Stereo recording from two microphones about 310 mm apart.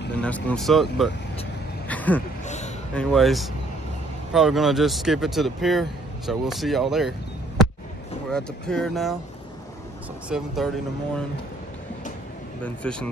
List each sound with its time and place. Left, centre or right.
0.2 s speech: centre
1.9 s vehicle: centre
2.4 s a sound: left
2.9 s speech: centre
10.3 s speech: centre
12.6 s speech: centre